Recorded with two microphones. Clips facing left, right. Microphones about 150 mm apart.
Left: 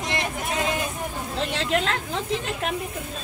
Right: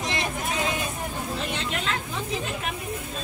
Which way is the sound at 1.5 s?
90° left.